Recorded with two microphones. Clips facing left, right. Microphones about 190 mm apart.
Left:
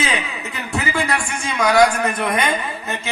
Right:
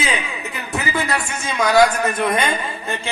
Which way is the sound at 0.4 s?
15° right (ahead or behind).